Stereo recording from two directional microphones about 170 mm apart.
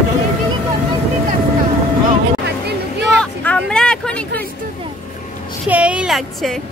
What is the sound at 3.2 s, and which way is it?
Speech, 5° left (ahead or behind).